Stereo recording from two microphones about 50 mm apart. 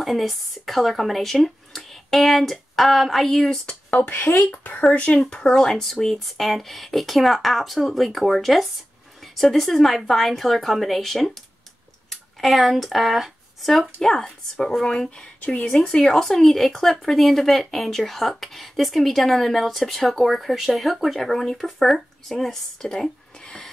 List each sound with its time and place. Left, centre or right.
0.0 s speech: centre
4.5 s speech: left; by 23.7 s centre